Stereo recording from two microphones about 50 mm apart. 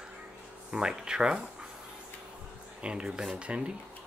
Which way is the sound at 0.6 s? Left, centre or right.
Centre.